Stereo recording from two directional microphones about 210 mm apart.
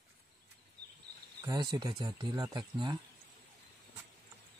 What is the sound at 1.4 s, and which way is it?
Speech, 20° right (ahead or behind).